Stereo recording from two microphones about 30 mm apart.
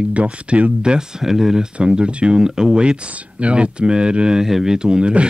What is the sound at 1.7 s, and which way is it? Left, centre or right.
Speech, right.